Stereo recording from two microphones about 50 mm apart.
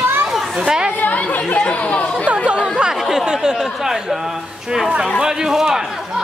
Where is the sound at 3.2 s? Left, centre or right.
Centre.